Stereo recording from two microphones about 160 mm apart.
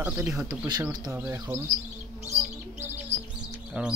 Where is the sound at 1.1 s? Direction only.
15° right (ahead or behind).